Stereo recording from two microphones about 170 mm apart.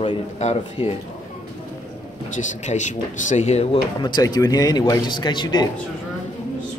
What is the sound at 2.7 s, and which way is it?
Speech, 45° left (ahead or behind).